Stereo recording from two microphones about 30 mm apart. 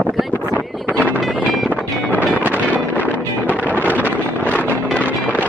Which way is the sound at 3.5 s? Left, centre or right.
Left.